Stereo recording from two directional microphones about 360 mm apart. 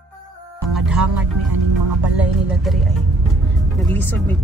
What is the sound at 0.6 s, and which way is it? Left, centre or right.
Music, centre.